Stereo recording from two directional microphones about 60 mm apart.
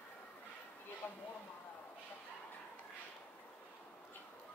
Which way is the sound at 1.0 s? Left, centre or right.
Left.